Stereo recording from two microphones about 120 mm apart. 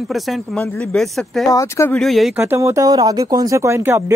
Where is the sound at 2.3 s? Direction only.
20° right (ahead or behind).